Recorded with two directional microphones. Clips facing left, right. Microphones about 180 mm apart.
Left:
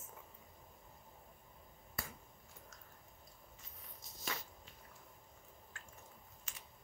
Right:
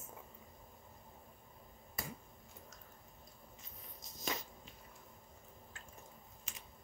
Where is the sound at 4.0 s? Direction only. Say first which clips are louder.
Right 4 dB; 20° right (ahead or behind).